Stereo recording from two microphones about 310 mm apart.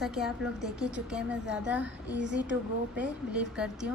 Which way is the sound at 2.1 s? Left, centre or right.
Right.